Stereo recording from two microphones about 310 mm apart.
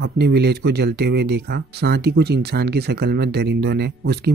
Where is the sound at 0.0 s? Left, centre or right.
Right.